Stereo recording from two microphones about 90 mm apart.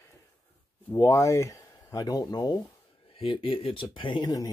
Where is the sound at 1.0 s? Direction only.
40° left (ahead or behind).